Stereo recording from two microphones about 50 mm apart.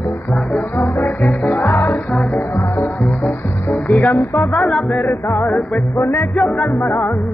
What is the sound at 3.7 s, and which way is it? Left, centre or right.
Music, left.